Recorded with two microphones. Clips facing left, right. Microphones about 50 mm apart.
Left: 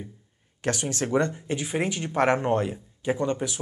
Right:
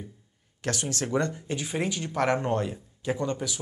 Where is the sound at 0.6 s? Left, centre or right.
Left.